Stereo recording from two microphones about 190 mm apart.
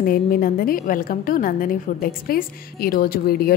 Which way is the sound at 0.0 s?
50° left (ahead or behind).